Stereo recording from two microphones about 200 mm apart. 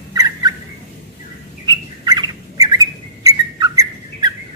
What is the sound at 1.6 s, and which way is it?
Bird, 20° right (ahead or behind).